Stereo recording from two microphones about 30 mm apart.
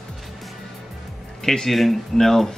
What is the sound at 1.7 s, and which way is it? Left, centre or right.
Speech, centre.